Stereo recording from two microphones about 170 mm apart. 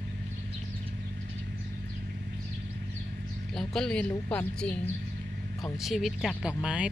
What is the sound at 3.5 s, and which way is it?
Speech, 5° left (ahead or behind).